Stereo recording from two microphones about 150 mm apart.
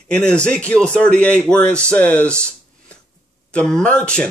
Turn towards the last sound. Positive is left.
turn(degrees=5)  # may be behind; listen again after turning